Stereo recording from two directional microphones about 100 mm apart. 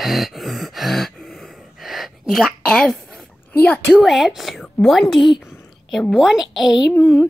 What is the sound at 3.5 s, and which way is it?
Speech, 15° left (ahead or behind).